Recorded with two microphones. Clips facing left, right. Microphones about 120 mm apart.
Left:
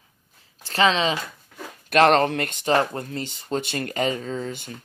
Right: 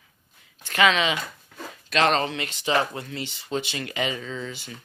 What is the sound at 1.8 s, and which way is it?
Speech, 55° left (ahead or behind).